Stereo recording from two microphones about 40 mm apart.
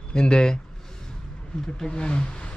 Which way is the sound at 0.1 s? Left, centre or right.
Left.